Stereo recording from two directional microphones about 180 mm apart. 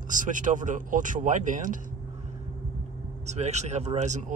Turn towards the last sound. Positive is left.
turn(degrees=-40)  # may be behind; listen again after turning